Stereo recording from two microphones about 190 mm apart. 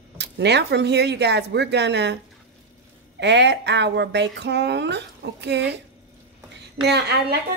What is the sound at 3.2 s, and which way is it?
Speech, 65° right (ahead or behind).